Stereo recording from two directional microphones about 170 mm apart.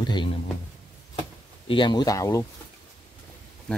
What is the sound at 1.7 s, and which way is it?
Speech, 30° left (ahead or behind).